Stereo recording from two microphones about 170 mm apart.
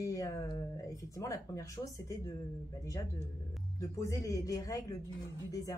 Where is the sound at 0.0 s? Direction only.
20° left (ahead or behind).